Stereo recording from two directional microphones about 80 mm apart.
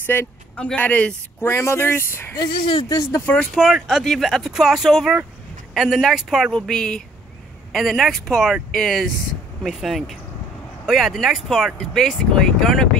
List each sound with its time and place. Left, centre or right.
0.0 s a man's voice: left
1.5 s speech: left
2.3 s speech: left
2.9 s speech: left
3.6 s speech: centre
6.6 s speech: centre